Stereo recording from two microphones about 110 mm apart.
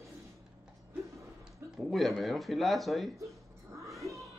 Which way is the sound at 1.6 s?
Centre (ahead or behind).